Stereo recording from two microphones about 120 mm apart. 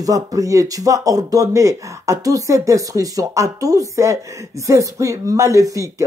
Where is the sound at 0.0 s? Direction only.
30° right (ahead or behind).